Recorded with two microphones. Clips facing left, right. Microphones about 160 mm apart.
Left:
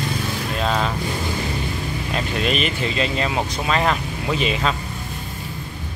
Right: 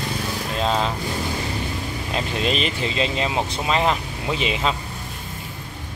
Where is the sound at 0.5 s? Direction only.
25° right (ahead or behind).